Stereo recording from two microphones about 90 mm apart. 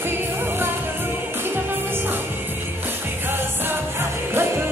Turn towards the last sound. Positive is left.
turn(degrees=-25)  # may be behind; listen again after turning